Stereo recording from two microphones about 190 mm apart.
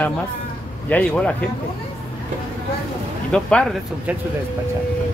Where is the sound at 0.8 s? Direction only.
5° left (ahead or behind).